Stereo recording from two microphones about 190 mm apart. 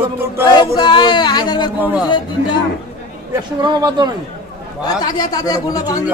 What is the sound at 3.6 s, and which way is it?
Speech, 20° right (ahead or behind).